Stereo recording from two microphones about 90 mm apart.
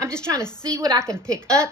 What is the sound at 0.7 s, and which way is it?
Speech, 45° right (ahead or behind).